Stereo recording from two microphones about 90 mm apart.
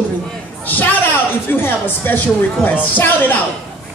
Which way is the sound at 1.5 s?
25° left (ahead or behind).